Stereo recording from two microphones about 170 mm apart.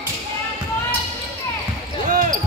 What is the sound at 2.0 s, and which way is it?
Basketball bounce, 50° right (ahead or behind).